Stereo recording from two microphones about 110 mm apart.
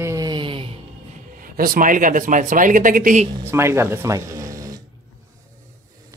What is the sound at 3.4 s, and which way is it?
Speech, 25° right (ahead or behind).